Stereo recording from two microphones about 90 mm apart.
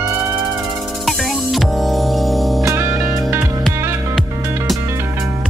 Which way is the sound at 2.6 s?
30° right (ahead or behind).